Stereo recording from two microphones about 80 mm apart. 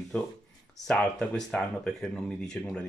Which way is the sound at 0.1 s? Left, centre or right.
Centre.